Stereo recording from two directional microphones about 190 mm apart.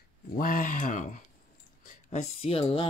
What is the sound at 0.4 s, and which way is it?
Speech, 45° left (ahead or behind).